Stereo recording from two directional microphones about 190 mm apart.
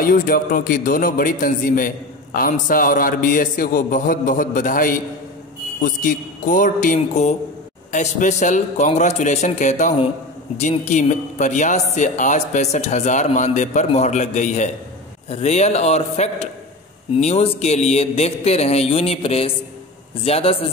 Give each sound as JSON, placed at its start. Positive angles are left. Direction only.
{"t": 0.0, "sound": "a man's voice", "side_deg": 45}